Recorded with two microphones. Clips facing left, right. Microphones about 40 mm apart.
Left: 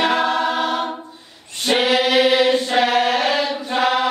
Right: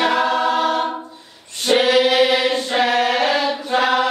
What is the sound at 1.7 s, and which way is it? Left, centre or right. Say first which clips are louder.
Choir: right 3 dB; left.